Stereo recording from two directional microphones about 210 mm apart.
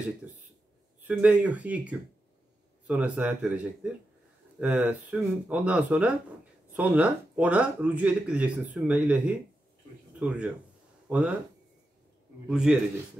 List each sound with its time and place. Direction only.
1.0 s a man's voice: 5° right (ahead or behind)
12.4 s a man's voice: centre (ahead or behind)